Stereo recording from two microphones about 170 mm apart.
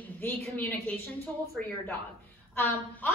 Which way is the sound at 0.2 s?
10° left (ahead or behind).